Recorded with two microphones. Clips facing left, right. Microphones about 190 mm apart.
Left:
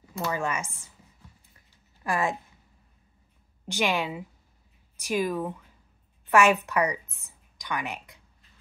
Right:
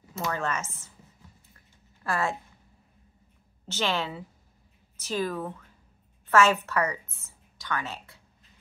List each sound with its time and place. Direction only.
0.3 s a woman's voice: 10° left (ahead or behind)
2.0 s speech: 15° left (ahead or behind)
3.6 s a woman's voice: 15° left (ahead or behind)